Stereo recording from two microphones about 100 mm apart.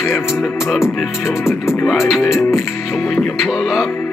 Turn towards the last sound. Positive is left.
turn(degrees=-5)  # may be behind; listen again after turning